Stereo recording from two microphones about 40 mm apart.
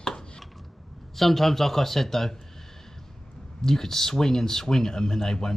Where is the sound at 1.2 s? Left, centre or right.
Centre.